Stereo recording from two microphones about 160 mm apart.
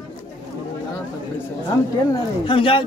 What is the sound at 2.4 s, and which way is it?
Speech, 35° left (ahead or behind).